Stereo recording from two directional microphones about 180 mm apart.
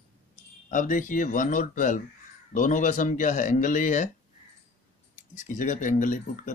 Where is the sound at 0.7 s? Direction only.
45° left (ahead or behind).